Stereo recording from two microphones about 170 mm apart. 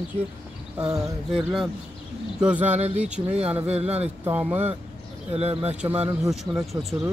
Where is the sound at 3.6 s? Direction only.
40° right (ahead or behind).